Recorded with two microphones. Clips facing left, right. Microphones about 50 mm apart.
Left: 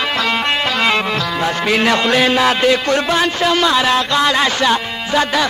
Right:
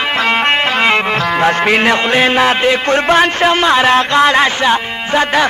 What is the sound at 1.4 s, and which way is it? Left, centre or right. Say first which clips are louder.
Speech: right 4 dB; right.